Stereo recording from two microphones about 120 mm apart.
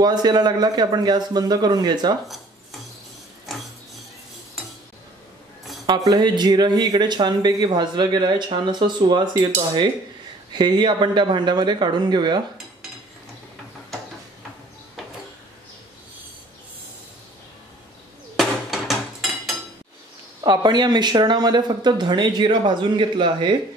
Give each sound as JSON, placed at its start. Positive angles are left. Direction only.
{"t": 0.0, "sound": "speech", "side_deg": -35}
{"t": 5.9, "sound": "speech", "side_deg": -35}
{"t": 10.5, "sound": "speech", "side_deg": -40}
{"t": 18.3, "sound": "hammer", "side_deg": 0}
{"t": 20.6, "sound": "speech", "side_deg": -35}